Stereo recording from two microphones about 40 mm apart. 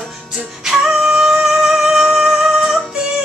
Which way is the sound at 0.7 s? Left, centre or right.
Centre.